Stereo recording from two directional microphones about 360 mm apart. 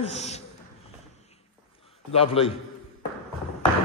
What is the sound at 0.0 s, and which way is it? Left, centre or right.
Speech, centre.